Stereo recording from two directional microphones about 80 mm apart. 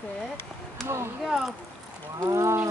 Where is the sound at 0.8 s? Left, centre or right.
Right.